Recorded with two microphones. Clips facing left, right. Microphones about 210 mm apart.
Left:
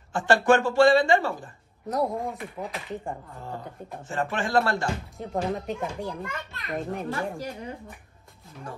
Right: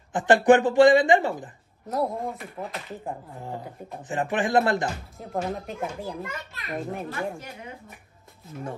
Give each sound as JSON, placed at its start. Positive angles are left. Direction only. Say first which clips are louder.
{"t": 0.1, "sound": "speech", "louder": "right 3 dB", "side_deg": -20}
{"t": 1.9, "sound": "a child's voice", "louder": "even", "side_deg": 0}
{"t": 3.3, "sound": "speech", "louder": "right 1 dB", "side_deg": -15}
{"t": 5.1, "sound": "a child's voice", "louder": "left 1 dB", "side_deg": 0}